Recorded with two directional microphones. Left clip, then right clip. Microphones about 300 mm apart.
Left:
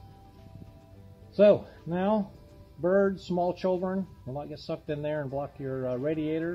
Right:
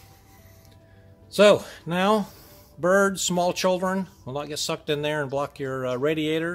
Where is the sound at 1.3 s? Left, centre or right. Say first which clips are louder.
Right 4 dB; right.